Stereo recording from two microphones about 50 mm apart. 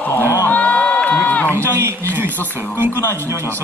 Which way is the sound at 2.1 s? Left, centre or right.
Right.